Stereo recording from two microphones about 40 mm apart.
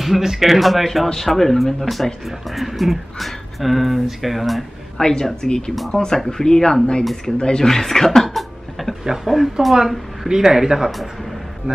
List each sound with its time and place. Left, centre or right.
0.0 s speech: centre
4.9 s speech: centre
5.7 s speech: centre
5.9 s speech: centre
8.3 s cough: centre
9.0 s speech: centre
9.3 s speech: centre
9.8 s speech: centre